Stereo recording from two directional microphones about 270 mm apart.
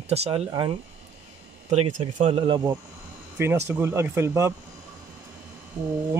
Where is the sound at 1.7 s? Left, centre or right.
Right.